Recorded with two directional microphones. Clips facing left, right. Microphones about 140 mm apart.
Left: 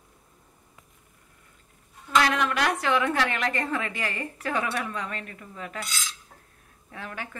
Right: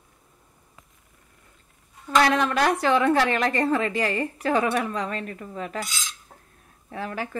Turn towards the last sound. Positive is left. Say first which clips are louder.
# right 7 dB
turn(degrees=-35)  # may be behind; listen again after turning